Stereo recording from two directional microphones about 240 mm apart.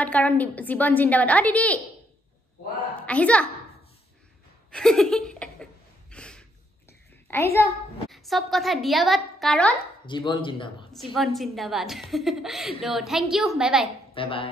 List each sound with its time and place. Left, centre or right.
0.0 s a woman's voice: centre
3.0 s a child's voice: centre
4.7 s speech: centre
6.1 s a sound: centre
7.5 s a child's voice: centre
10.0 s speech: centre
11.1 s a child's voice: centre
14.1 s speech: left